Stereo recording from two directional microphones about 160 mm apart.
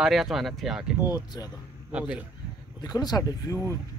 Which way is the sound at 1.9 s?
10° right (ahead or behind).